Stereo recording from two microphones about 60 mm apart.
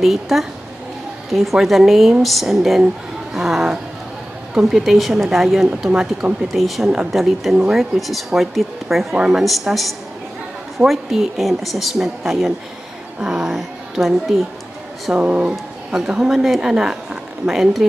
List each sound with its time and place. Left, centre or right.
0.0 s a woman's voice: centre
5.9 s speech: centre
6.5 s a woman's voice: centre
9.1 s a woman's voice: centre
9.4 s a woman's voice: centre
15.1 s a woman's voice: right; by 17.8 s centre